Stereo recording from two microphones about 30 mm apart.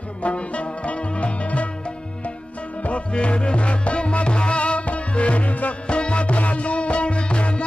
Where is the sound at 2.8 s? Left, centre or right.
Left.